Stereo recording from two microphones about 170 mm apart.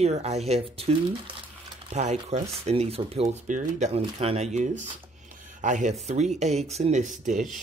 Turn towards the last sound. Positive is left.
turn(degrees=-50)  # may be behind; listen again after turning